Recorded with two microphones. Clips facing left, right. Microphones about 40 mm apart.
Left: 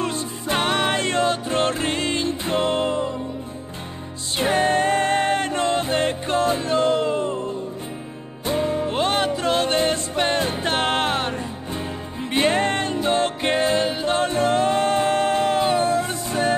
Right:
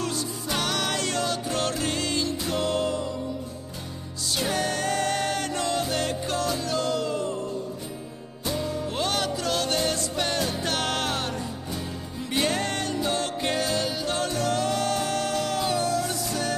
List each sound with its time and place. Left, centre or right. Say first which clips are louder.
0.0 s music: left 4 dB; left
4.4 s music: left 8 dB; left
8.5 s music: left 7 dB; left